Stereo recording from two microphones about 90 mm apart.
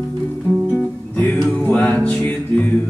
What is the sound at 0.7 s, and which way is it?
Music, 20° left (ahead or behind).